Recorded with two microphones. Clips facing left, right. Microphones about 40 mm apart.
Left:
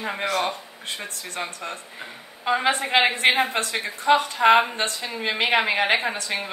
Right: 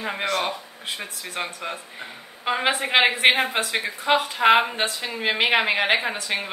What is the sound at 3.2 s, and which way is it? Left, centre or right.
Speech, centre.